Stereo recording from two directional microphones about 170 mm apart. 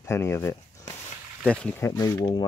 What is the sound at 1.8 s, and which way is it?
Speech, 20° left (ahead or behind).